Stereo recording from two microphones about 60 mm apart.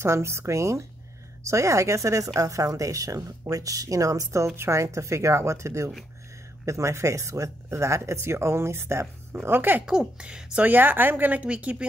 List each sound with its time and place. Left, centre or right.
0.0 s speech: right
9.8 s speech: centre
10.6 s speech: right